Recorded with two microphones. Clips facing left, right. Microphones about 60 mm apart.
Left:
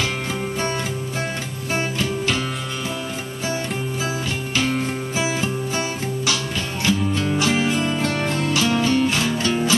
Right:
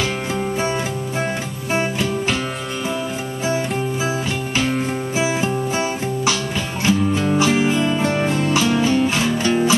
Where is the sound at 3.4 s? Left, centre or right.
Centre.